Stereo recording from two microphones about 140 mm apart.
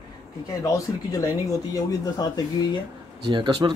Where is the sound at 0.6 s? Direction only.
25° left (ahead or behind).